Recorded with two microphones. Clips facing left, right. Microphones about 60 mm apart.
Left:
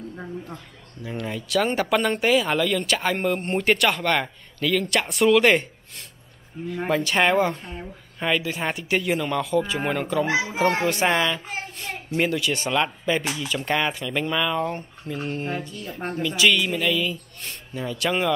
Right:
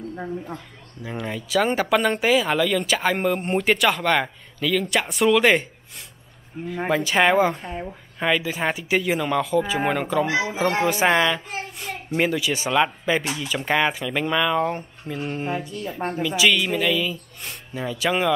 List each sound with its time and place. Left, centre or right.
0.1 s speech: centre
1.0 s speech: centre